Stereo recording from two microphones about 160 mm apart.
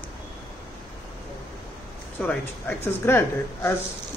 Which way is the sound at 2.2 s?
10° left (ahead or behind).